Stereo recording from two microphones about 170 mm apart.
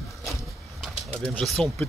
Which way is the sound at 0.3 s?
Centre (ahead or behind).